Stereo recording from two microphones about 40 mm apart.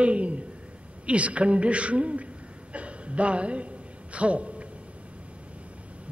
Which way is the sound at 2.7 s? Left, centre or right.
Right.